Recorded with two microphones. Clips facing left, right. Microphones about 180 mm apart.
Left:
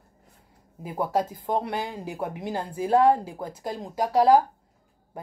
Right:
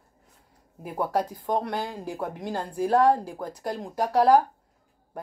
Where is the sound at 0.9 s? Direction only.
Centre (ahead or behind).